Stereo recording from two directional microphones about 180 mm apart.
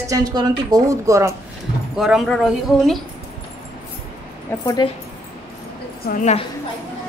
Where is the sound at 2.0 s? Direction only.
Centre (ahead or behind).